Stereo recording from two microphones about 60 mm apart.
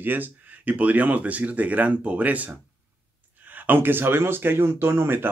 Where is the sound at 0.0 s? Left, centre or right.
Right.